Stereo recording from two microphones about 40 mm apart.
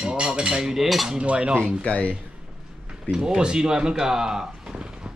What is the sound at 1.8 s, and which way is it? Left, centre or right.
Speech, left.